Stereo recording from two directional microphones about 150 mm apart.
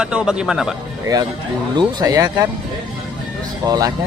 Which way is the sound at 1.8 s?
25° right (ahead or behind).